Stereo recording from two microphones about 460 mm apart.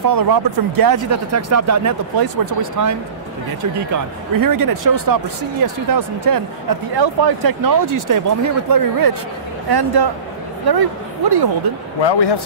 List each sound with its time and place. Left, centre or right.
0.1 s speech: right
2.1 s speech: right
4.4 s speech: right
12.0 s a man's voice: left